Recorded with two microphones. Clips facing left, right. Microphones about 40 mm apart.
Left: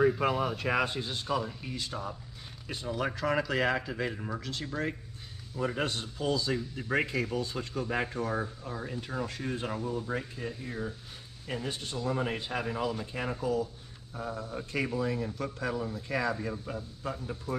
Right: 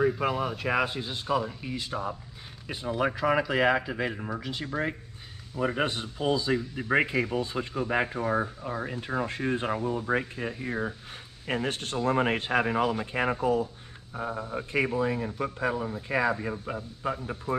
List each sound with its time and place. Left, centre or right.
0.0 s speech: centre; by 17.6 s right